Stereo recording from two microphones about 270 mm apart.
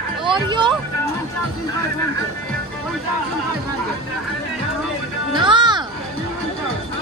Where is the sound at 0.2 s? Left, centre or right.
Centre.